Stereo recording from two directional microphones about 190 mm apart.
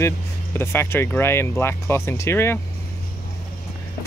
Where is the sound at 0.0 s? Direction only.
15° left (ahead or behind).